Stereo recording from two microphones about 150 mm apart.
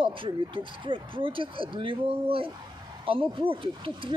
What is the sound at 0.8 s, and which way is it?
Speech, 35° right (ahead or behind).